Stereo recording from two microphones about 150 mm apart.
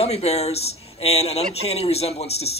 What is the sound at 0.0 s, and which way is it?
Speech, 45° left (ahead or behind).